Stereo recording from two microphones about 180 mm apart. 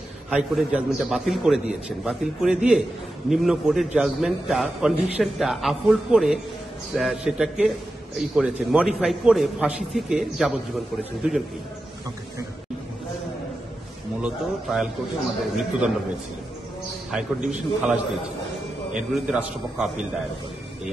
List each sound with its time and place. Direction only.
0.3 s a man's voice: 5° right (ahead or behind)
14.2 s a man's voice: 5° right (ahead or behind)
17.1 s a man's voice: 5° right (ahead or behind)
18.9 s a man's voice: 5° right (ahead or behind)